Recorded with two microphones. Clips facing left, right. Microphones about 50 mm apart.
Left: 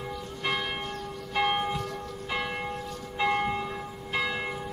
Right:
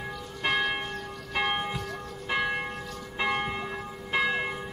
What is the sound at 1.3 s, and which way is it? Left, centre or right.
Church bell, centre.